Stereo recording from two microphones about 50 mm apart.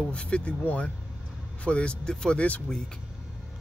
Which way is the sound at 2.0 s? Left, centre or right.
Centre.